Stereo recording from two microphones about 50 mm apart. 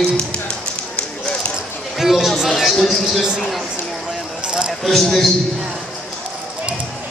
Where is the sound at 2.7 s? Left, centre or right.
Centre.